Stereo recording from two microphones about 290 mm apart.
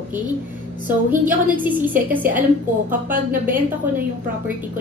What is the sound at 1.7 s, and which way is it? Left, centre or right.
Speech, centre.